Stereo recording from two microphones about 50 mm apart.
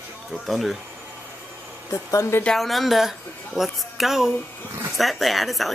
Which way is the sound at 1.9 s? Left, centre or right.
Left.